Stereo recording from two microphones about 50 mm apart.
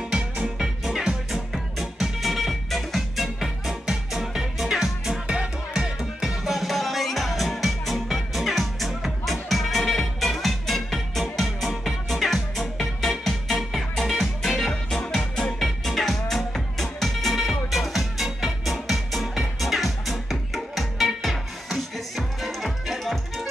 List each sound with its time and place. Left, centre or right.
0.1 s music: centre
0.6 s music: centre